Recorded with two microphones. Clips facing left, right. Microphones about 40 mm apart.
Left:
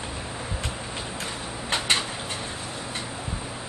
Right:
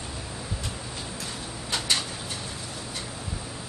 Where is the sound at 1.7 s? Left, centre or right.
Left.